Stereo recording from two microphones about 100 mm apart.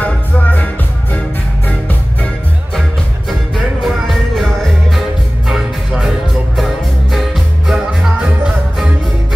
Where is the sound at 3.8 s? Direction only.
Centre (ahead or behind).